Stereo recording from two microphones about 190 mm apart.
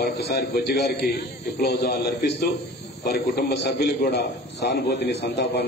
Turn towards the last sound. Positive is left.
turn(degrees=65)  # may be behind; listen again after turning